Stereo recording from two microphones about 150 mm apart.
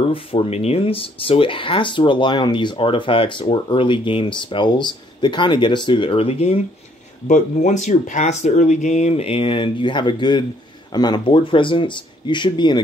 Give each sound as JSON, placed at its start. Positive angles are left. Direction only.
{"t": 0.0, "sound": "speech", "side_deg": 35}
{"t": 7.2, "sound": "speech", "side_deg": 55}